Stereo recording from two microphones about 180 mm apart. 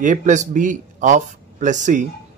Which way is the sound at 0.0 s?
45° right (ahead or behind).